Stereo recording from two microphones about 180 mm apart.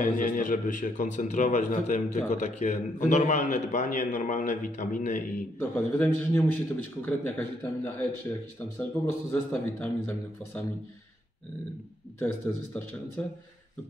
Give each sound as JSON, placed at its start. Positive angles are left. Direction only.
{"t": 0.0, "sound": "a man's voice", "side_deg": 45}
{"t": 5.6, "sound": "a man's voice", "side_deg": 10}
{"t": 12.2, "sound": "a man's voice", "side_deg": 10}